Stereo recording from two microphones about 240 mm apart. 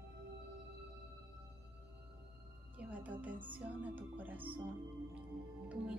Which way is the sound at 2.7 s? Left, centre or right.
Centre.